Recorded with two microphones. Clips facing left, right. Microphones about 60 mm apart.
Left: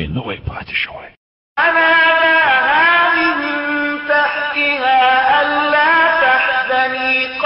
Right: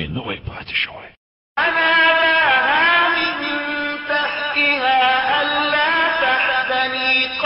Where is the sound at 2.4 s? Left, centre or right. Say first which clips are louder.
Left 3 dB; centre.